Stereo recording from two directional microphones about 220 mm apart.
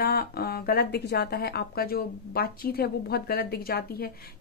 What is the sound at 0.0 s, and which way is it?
Speech, 45° left (ahead or behind).